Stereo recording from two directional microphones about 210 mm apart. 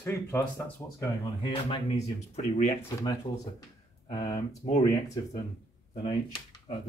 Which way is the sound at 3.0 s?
15° left (ahead or behind).